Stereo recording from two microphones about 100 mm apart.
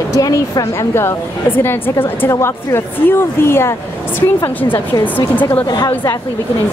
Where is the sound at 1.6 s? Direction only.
20° left (ahead or behind).